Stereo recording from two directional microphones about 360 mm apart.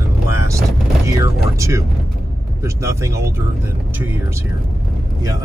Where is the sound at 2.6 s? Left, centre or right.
Centre.